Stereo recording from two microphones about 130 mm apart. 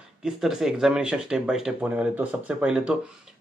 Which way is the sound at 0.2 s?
Centre (ahead or behind).